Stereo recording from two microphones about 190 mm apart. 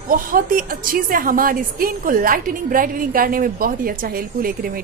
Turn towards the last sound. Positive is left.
turn(degrees=-50)  # may be behind; listen again after turning